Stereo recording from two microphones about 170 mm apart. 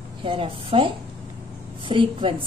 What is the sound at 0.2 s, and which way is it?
A woman's voice, 30° right (ahead or behind).